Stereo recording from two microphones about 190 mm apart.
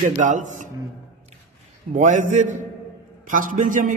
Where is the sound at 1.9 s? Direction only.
40° right (ahead or behind).